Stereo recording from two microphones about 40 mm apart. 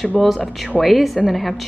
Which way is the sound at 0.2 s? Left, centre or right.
Centre.